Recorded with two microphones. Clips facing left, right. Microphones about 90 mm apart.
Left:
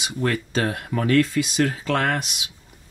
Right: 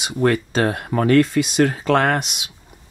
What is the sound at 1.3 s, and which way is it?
Speech, 55° right (ahead or behind).